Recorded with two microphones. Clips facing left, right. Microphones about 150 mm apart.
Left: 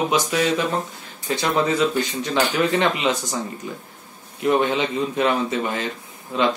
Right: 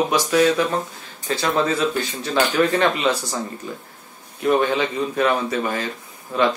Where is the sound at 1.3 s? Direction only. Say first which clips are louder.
Even; 20° left (ahead or behind).